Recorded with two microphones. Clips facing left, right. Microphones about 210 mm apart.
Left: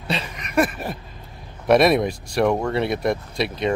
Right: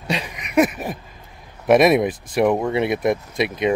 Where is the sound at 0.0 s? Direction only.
15° right (ahead or behind).